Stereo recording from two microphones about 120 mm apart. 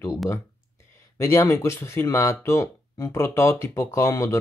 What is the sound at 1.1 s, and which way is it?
Speech, 25° left (ahead or behind).